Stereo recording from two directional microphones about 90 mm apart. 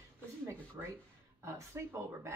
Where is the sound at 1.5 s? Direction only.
35° right (ahead or behind).